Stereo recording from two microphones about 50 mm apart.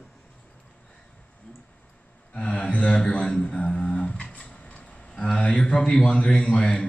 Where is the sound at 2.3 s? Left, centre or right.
Centre.